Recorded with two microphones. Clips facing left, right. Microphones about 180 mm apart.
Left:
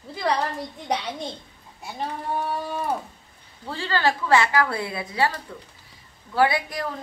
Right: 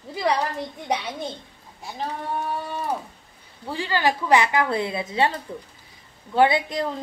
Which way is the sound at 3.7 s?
15° right (ahead or behind).